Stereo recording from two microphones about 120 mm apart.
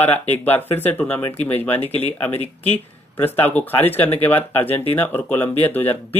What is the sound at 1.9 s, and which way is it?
Speech, 60° left (ahead or behind).